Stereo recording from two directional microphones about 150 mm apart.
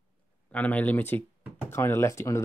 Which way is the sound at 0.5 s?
10° left (ahead or behind).